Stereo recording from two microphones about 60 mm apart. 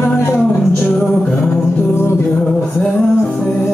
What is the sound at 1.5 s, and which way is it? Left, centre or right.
Music, left.